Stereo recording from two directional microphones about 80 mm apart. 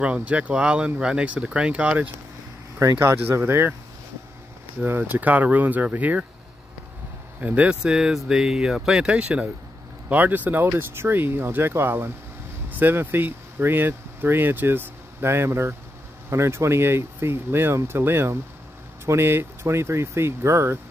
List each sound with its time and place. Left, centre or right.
0.0 s speech: centre
4.8 s speech: right
7.3 s speech: centre; by 20.8 s right